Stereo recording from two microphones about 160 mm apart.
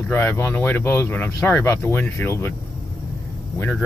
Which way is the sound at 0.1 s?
15° left (ahead or behind).